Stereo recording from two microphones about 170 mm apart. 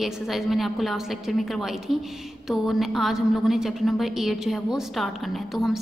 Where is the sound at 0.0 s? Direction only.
Centre (ahead or behind).